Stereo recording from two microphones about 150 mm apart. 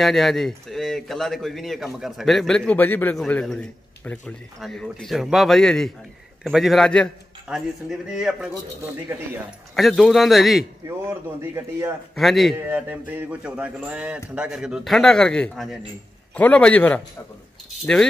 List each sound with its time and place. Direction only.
0.0 s speech: centre (ahead or behind)
9.8 s speech: centre (ahead or behind)
11.1 s speech: 15° right (ahead or behind)
12.2 s speech: centre (ahead or behind)
12.5 s a man's voice: 10° right (ahead or behind); by 17.0 s 10° left (ahead or behind)